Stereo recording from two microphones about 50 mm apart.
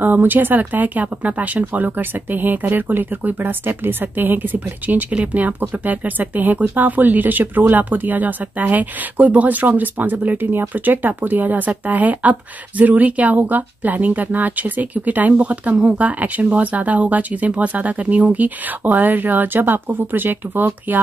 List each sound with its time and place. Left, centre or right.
0.0 s speech: right